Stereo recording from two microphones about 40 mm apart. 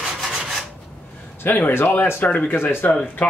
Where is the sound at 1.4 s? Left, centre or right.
Left.